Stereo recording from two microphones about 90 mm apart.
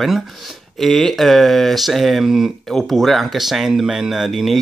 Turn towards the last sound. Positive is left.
turn(degrees=0)  # may be behind; listen again after turning